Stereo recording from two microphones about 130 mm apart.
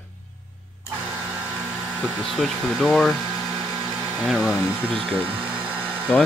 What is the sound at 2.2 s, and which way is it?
Speech, centre (ahead or behind).